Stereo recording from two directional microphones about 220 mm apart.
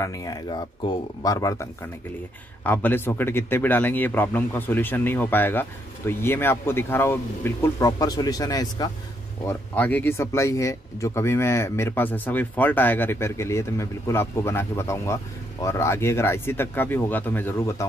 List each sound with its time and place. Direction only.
0.0 s speech: 15° left (ahead or behind)